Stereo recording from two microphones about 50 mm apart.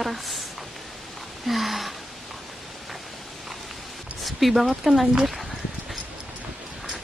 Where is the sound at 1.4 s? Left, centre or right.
Centre.